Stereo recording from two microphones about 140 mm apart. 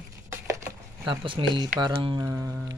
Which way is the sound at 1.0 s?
35° right (ahead or behind).